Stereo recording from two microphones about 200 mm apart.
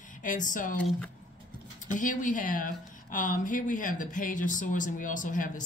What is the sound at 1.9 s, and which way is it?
A woman's voice, 40° left (ahead or behind).